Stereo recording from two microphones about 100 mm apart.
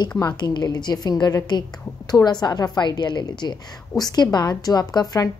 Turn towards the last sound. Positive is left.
turn(degrees=35)  # may be behind; listen again after turning